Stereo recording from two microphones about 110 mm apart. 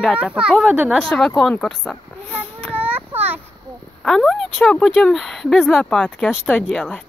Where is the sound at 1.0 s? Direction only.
5° left (ahead or behind).